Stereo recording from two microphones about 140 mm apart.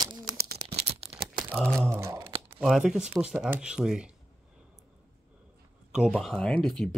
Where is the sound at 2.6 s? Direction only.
5° right (ahead or behind).